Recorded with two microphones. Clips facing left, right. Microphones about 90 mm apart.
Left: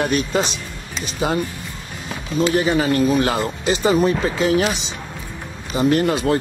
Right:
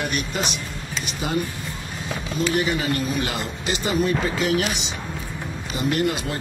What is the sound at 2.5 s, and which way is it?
Speech, 35° left (ahead or behind).